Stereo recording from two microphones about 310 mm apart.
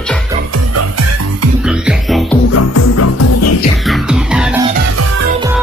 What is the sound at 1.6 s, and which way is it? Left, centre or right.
Music, centre.